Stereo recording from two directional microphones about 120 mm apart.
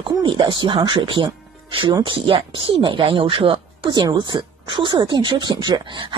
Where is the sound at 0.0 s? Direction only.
40° right (ahead or behind).